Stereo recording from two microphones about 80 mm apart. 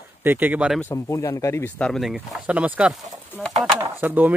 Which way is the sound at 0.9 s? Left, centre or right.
Left.